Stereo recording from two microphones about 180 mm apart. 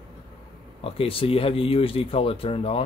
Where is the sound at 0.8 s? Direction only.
30° left (ahead or behind).